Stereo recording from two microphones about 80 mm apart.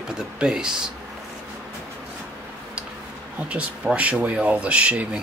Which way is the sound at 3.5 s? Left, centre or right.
Centre.